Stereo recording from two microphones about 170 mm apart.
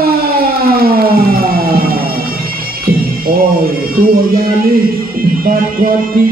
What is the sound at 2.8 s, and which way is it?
Speech, 60° right (ahead or behind).